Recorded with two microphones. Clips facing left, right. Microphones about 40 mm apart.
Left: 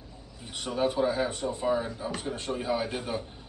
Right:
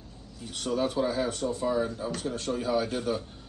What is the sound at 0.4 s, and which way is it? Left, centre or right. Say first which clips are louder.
Speech: even; left.